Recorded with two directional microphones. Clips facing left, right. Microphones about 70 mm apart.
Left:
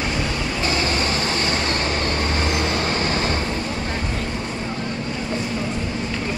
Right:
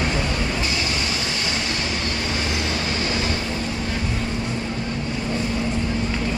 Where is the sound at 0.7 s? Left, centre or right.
Left.